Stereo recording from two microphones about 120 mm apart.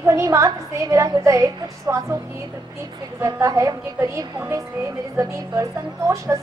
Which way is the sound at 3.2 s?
30° right (ahead or behind).